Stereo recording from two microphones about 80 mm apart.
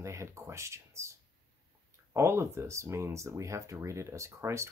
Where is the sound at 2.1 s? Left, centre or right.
Right.